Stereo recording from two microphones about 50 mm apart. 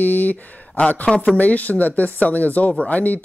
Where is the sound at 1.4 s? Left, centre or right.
Left.